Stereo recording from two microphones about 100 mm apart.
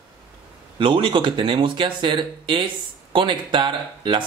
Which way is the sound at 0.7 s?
55° right (ahead or behind).